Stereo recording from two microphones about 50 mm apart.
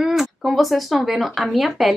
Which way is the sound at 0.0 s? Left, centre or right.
Centre.